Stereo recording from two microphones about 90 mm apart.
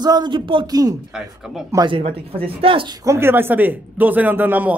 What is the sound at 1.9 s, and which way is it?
Speech, 90° right.